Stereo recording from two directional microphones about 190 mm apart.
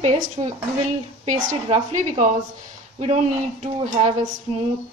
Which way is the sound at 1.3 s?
40° right (ahead or behind).